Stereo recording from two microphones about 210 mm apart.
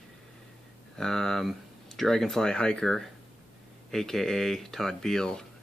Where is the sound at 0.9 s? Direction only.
Centre (ahead or behind).